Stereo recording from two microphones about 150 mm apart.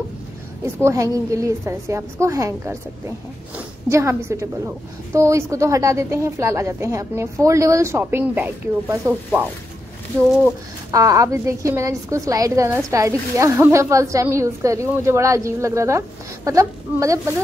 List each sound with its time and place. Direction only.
0.8 s a woman's voice: 20° right (ahead or behind)
10.9 s a woman's voice: 20° right (ahead or behind)